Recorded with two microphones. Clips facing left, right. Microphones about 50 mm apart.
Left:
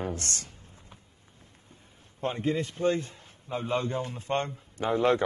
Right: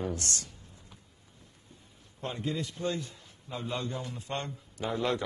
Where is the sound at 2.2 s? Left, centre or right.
Left.